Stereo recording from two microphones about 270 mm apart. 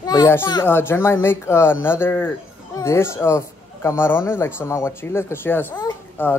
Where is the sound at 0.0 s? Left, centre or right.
Centre.